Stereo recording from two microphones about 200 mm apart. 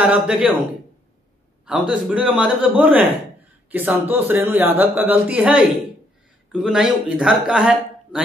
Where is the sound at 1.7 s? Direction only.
5° right (ahead or behind).